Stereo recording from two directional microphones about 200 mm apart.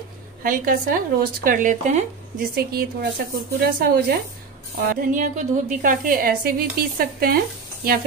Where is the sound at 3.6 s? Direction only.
50° right (ahead or behind).